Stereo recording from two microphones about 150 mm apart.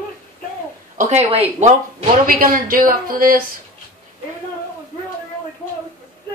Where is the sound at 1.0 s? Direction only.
45° right (ahead or behind).